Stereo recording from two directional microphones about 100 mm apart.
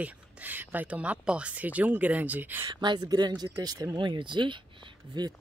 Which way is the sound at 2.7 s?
50° right (ahead or behind).